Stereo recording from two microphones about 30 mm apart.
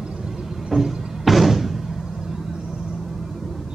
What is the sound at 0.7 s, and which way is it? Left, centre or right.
Music, centre.